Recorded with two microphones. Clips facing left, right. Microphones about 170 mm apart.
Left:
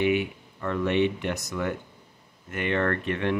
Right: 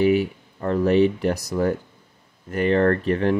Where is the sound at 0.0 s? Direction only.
35° right (ahead or behind).